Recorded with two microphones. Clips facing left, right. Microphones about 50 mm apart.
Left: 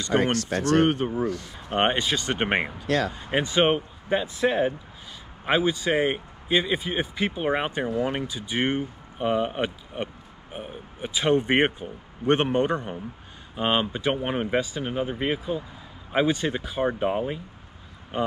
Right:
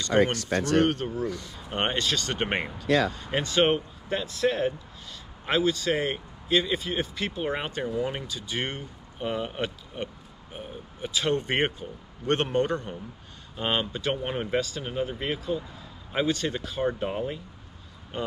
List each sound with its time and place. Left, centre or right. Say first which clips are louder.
0.0 s speech: even; left